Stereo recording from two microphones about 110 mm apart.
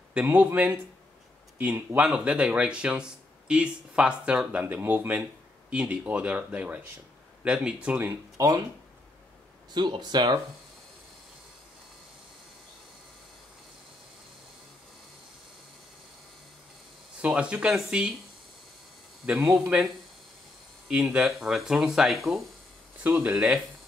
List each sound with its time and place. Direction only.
0.1 s speech: 15° right (ahead or behind)
9.8 s speech: 40° right (ahead or behind)
17.2 s speech: 10° right (ahead or behind)
19.2 s speech: 10° right (ahead or behind)
20.9 s speech: 5° right (ahead or behind)
22.9 s speech: 15° right (ahead or behind)